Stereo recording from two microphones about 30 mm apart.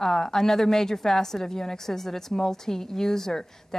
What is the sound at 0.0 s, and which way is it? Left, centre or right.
A woman's voice, centre.